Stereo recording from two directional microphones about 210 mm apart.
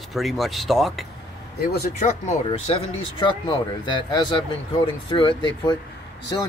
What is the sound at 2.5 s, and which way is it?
Speech, 30° left (ahead or behind).